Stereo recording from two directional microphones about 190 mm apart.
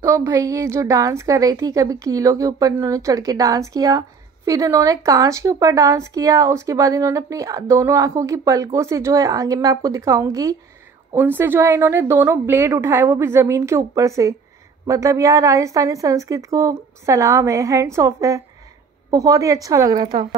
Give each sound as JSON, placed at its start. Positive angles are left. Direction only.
{"t": 0.0, "sound": "speech", "side_deg": -15}